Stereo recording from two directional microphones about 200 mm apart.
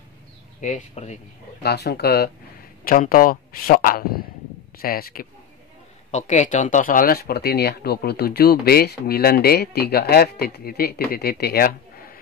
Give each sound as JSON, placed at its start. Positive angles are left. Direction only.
{"t": 0.6, "sound": "speech", "side_deg": 40}
{"t": 1.6, "sound": "speech", "side_deg": 55}
{"t": 6.1, "sound": "speech", "side_deg": 35}